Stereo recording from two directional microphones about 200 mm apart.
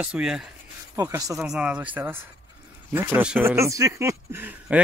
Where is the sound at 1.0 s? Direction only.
15° right (ahead or behind).